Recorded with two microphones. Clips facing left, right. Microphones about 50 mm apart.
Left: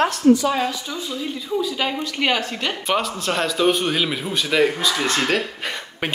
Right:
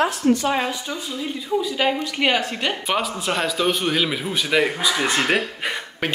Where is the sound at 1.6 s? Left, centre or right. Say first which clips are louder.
Right 2 dB; centre.